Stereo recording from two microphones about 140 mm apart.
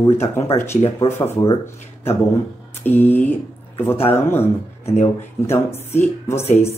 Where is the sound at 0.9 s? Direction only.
15° left (ahead or behind).